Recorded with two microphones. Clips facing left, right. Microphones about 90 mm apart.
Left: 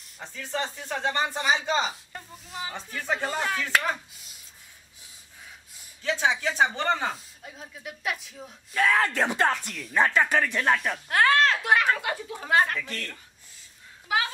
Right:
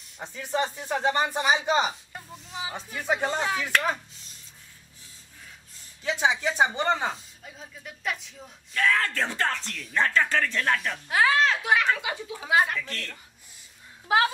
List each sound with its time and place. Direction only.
0.2 s speech: 15° right (ahead or behind)
2.3 s speech: centre (ahead or behind)
2.7 s speech: 15° right (ahead or behind)
3.3 s speech: 5° left (ahead or behind)
4.1 s a sound: 10° left (ahead or behind)
6.0 s speech: 15° right (ahead or behind)
7.4 s speech: centre (ahead or behind)
11.1 s speech: 5° right (ahead or behind)
12.7 s speech: 10° left (ahead or behind)
14.0 s speech: 35° right (ahead or behind)